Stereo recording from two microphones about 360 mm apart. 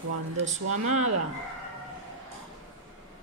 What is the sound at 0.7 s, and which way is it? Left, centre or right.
Speech, centre.